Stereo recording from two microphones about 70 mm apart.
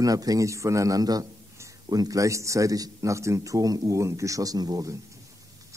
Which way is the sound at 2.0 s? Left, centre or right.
Right.